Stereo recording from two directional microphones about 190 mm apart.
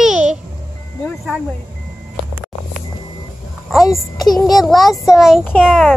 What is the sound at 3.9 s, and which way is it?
Speech, 20° left (ahead or behind).